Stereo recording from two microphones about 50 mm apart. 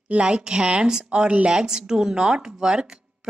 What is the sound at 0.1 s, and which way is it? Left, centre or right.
A woman's voice, right.